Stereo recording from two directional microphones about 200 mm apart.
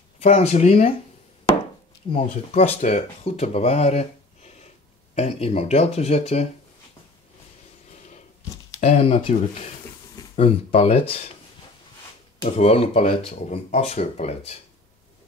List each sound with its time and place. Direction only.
0.2 s speech: 35° left (ahead or behind)
2.1 s speech: 30° left (ahead or behind)
8.8 s speech: 30° left (ahead or behind)
12.4 s speech: 30° left (ahead or behind)